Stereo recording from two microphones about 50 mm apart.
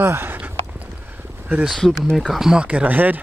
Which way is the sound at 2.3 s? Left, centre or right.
Centre.